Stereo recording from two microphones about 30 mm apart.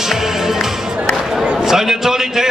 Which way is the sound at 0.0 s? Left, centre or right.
Centre.